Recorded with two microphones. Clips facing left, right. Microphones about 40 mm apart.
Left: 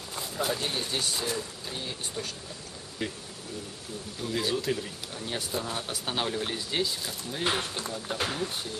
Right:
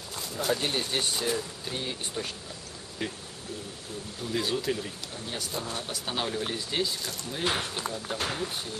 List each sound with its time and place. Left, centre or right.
0.6 s speech: right
1.1 s speech: centre
3.0 s speech: centre
4.3 s speech: centre
5.3 s speech: centre